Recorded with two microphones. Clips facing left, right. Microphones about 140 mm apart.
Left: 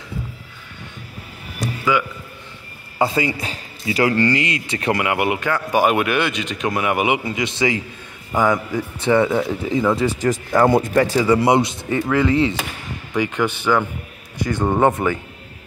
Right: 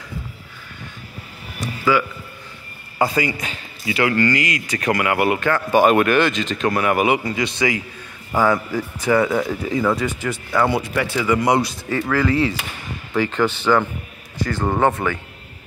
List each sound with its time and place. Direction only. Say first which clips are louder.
1.9 s a man's voice: right 1 dB; 20° left (ahead or behind)
10.0 s a man's voice: left 5 dB; 40° left (ahead or behind); by 15.1 s 20° left (ahead or behind)